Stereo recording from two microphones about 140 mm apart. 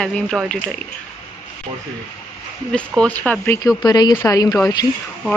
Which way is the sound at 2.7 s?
5° left (ahead or behind).